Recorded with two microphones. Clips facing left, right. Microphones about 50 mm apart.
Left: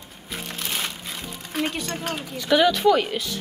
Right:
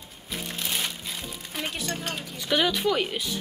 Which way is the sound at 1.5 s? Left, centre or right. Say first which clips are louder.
Left 7 dB; left.